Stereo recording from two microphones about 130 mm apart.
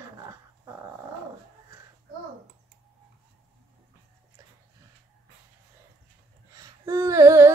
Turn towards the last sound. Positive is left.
turn(degrees=-25)  # may be behind; listen again after turning